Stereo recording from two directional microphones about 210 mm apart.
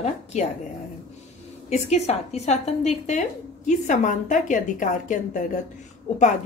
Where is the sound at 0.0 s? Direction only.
30° left (ahead or behind).